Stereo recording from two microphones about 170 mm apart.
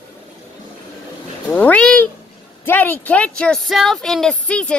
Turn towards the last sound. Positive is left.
turn(degrees=5)  # may be behind; listen again after turning